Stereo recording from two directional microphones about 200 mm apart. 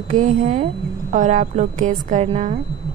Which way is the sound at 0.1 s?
40° right (ahead or behind).